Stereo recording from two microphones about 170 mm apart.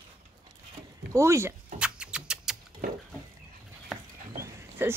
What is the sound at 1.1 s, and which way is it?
Speech, 15° right (ahead or behind).